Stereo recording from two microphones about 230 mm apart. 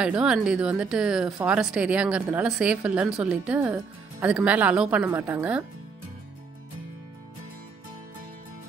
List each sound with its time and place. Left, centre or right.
0.0 s a woman's voice: centre